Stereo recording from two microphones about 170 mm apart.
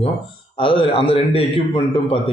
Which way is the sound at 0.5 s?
30° left (ahead or behind).